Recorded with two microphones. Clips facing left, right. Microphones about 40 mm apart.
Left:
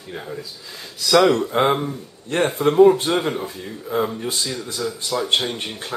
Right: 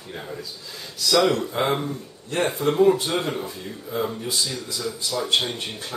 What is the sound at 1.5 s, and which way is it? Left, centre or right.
Speech, left.